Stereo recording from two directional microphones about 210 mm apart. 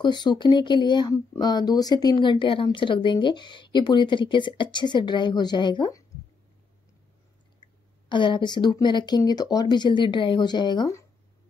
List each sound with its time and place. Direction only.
0.0 s speech: 20° left (ahead or behind)
8.1 s speech: 20° left (ahead or behind)